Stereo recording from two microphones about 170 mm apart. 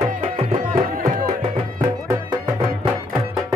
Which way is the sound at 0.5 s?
50° right (ahead or behind).